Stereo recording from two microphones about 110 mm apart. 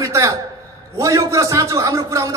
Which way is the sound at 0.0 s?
30° right (ahead or behind).